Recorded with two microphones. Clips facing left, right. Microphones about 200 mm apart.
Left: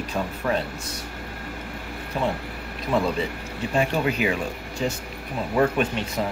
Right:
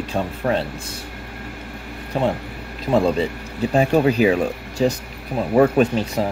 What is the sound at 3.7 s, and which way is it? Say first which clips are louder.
Speech: right 7 dB; 35° right (ahead or behind).